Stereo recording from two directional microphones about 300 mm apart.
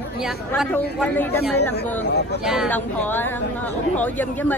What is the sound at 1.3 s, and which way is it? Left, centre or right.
Speech, left.